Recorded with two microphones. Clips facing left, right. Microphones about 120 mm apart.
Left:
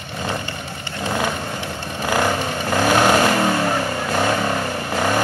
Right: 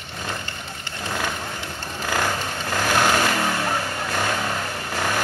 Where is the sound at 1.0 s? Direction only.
20° left (ahead or behind).